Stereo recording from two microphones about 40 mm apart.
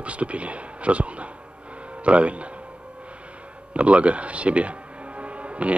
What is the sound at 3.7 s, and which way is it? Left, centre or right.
Speech, right.